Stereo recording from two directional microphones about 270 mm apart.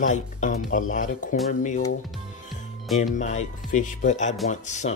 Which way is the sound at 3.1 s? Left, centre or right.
Left.